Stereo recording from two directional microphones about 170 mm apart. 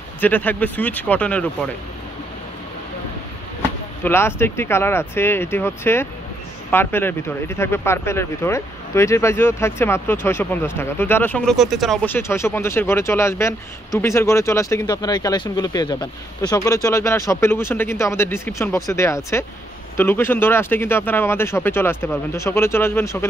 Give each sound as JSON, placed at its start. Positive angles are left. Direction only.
{"t": 0.2, "sound": "speech", "side_deg": 10}
{"t": 4.0, "sound": "speech", "side_deg": 15}